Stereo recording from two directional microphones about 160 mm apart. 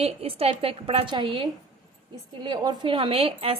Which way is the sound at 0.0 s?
40° right (ahead or behind).